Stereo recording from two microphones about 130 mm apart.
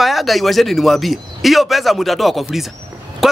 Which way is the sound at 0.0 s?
Centre (ahead or behind).